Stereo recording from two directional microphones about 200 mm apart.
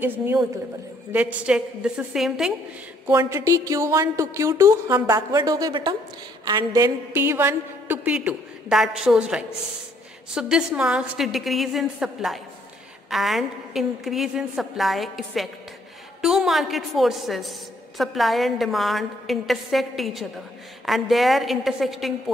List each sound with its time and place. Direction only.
0.0 s a woman's voice: 10° right (ahead or behind)
3.1 s a woman's voice: 15° right (ahead or behind)